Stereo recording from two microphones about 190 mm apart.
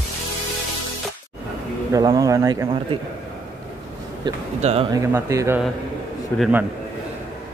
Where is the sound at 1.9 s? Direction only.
20° right (ahead or behind).